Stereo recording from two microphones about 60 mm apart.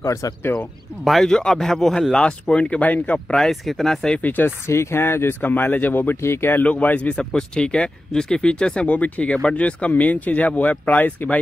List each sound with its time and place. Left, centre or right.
0.0 s speech: left
1.2 s a man's voice: centre
3.3 s a man's voice: centre
4.2 s speech: left
4.6 s speech: left
6.6 s speech: left
7.2 s speech: centre; by 11.3 s left